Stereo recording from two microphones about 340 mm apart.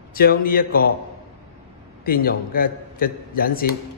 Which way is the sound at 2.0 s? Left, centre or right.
Left.